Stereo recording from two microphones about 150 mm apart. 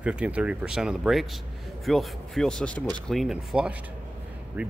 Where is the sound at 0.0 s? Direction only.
10° right (ahead or behind).